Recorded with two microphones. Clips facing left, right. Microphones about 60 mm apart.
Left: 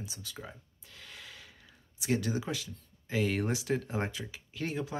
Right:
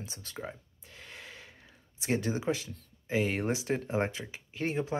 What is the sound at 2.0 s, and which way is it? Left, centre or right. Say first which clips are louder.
Speech: even; right.